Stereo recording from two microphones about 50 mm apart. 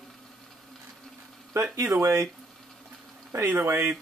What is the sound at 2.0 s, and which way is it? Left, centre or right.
Speech, right.